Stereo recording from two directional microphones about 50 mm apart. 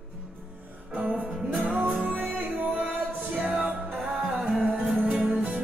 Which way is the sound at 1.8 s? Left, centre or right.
Right.